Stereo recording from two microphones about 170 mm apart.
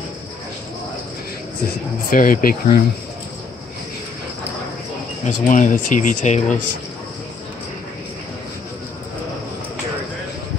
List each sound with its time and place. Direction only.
2.0 s speech: 55° left (ahead or behind)
5.2 s speech: 50° left (ahead or behind)